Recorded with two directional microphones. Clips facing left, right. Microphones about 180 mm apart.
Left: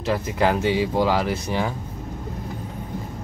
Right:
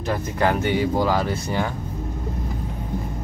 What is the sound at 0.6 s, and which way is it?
Speech, 90° left.